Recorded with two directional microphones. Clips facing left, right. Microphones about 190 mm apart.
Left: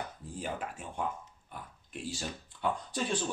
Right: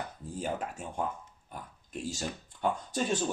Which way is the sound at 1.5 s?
45° right (ahead or behind).